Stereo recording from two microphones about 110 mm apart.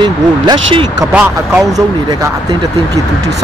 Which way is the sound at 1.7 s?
30° right (ahead or behind).